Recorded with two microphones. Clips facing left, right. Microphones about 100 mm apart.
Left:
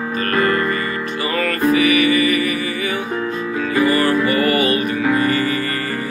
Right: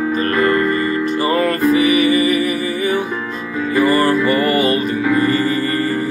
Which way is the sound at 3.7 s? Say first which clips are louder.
Right 2 dB; 35° right (ahead or behind).